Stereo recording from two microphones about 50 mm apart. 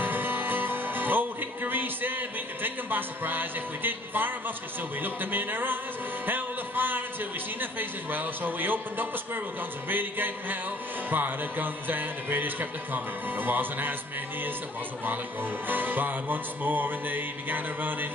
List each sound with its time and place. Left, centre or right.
0.0 s music: right
5.0 s speech: right
6.2 s music: right
8.1 s speech: right
15.7 s speech: right